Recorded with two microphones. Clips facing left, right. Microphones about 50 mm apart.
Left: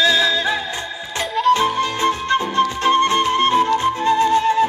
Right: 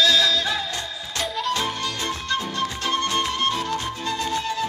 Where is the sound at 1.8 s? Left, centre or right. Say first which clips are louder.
Left 9 dB; left.